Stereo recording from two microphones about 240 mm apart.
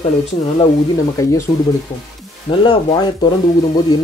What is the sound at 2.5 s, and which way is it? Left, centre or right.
Speech, left.